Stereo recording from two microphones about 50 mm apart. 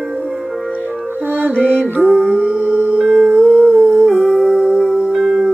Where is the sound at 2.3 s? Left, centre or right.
Right.